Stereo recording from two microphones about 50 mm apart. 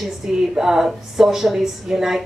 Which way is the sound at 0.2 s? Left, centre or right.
Centre.